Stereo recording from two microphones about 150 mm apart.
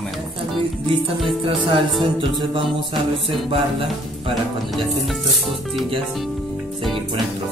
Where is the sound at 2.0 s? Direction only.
35° right (ahead or behind).